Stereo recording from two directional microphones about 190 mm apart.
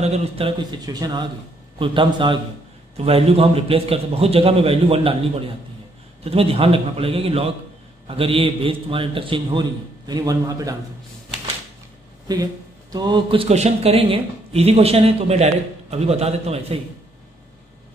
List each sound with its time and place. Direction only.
0.0 s a man's voice: 35° right (ahead or behind); by 10.8 s 20° right (ahead or behind)
12.9 s speech: 25° right (ahead or behind)